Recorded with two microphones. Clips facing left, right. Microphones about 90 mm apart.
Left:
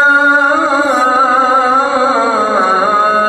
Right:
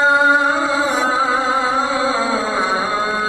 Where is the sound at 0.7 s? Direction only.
45° left (ahead or behind).